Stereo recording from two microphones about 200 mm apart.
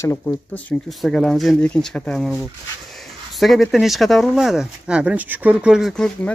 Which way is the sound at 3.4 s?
Centre (ahead or behind).